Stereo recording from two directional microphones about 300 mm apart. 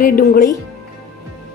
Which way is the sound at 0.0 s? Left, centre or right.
Left.